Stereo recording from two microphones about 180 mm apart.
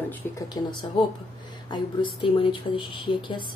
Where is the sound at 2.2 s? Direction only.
30° left (ahead or behind).